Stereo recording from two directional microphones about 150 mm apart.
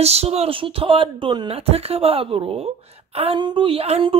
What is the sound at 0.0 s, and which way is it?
Speech, 45° right (ahead or behind).